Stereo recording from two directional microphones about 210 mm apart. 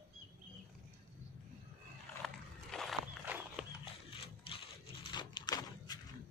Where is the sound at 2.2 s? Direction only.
Centre (ahead or behind).